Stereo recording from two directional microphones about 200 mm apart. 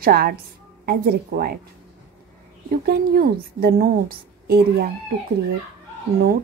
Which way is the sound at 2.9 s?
50° right (ahead or behind).